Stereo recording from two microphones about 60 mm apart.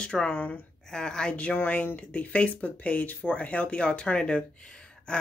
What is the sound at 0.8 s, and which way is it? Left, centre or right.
Speech, centre.